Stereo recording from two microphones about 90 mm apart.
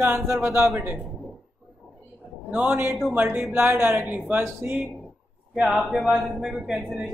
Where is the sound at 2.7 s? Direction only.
25° right (ahead or behind).